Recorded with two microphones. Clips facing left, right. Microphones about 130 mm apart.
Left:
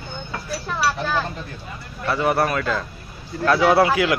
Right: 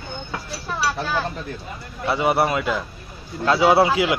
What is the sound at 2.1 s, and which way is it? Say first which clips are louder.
Speech: right 1 dB; 15° right (ahead or behind).